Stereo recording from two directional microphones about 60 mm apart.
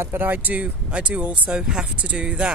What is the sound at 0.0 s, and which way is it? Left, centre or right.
Speech, right.